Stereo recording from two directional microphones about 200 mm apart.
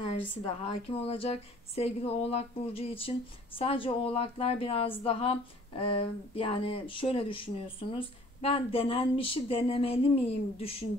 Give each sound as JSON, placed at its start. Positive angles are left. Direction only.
{"t": 0.3, "sound": "speech", "side_deg": 25}